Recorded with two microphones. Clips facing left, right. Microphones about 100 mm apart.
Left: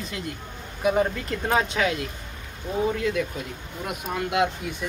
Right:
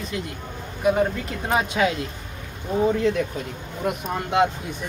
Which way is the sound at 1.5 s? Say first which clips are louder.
Right 2 dB; 15° right (ahead or behind).